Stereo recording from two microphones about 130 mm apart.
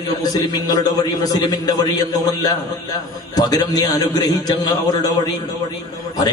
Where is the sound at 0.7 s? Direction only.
30° left (ahead or behind).